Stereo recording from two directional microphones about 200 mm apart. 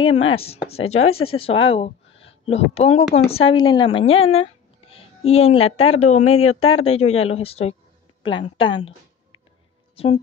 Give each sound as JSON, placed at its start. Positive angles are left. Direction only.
{"t": 0.0, "sound": "a woman's voice", "side_deg": 25}
{"t": 9.9, "sound": "speech", "side_deg": 30}